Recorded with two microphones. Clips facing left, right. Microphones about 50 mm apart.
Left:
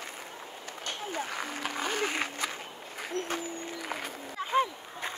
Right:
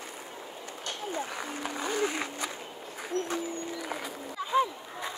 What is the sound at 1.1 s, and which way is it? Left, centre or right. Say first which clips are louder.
Applause: even; left.